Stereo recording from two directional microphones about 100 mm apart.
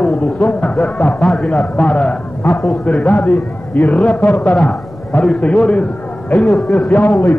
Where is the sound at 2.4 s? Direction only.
25° left (ahead or behind).